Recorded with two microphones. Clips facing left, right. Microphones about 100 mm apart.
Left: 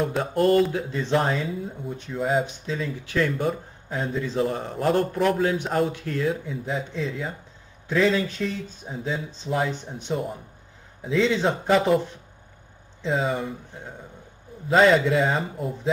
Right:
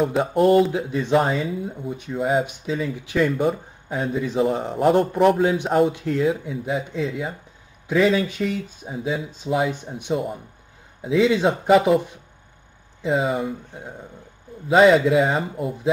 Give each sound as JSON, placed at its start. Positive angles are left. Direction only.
{"t": 0.0, "sound": "speech", "side_deg": -5}
{"t": 3.4, "sound": "a man's voice", "side_deg": -5}
{"t": 14.7, "sound": "a man's voice", "side_deg": -5}